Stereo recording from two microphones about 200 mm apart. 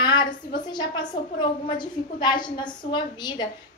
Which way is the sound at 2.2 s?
20° left (ahead or behind).